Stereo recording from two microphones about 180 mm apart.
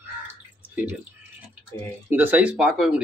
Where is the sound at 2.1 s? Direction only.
10° right (ahead or behind).